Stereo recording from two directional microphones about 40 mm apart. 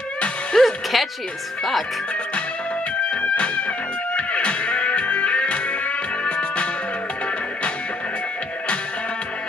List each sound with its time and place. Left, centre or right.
0.6 s music: centre
1.6 s speech: centre
3.0 s music: left